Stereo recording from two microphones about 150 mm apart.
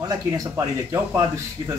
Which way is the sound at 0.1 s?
25° right (ahead or behind).